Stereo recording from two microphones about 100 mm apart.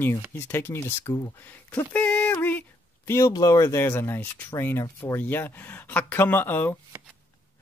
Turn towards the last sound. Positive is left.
turn(degrees=20)  # may be behind; listen again after turning